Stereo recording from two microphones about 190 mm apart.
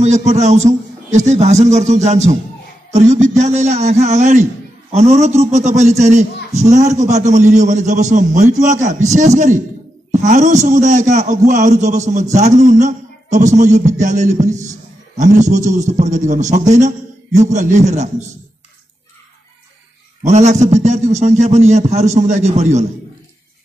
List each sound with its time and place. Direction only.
0.0 s a man's voice: 35° right (ahead or behind)
20.2 s a man's voice: 35° right (ahead or behind)